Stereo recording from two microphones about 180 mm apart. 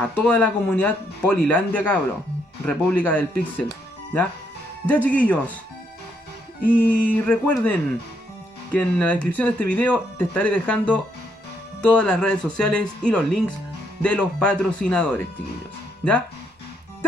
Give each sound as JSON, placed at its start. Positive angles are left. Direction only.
{"t": 0.1, "sound": "speech", "side_deg": 10}
{"t": 4.8, "sound": "speech", "side_deg": 10}
{"t": 6.6, "sound": "speech", "side_deg": 10}
{"t": 8.7, "sound": "speech", "side_deg": 10}